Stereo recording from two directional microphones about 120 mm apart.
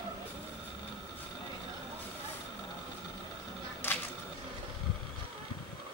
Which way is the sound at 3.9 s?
15° left (ahead or behind).